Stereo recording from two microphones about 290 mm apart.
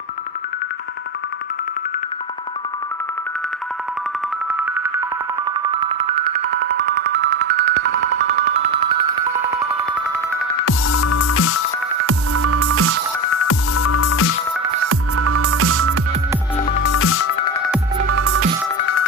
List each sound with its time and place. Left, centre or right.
5.5 s music: centre
6.5 s music: right; by 9.2 s centre
10.6 s music: left
12.1 s music: right
13.3 s music: left
14.8 s music: right
16.8 s music: left
18.0 s music: right